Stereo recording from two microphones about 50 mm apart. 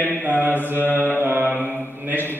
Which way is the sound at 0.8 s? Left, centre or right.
Left.